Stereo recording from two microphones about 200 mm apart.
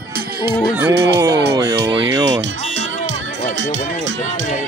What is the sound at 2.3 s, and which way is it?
Music, 65° right (ahead or behind).